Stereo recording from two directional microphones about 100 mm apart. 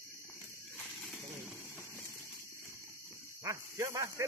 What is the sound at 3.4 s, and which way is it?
Snake, 35° right (ahead or behind).